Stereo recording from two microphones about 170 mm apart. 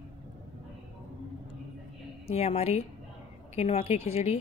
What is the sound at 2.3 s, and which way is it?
A woman's voice, 35° left (ahead or behind).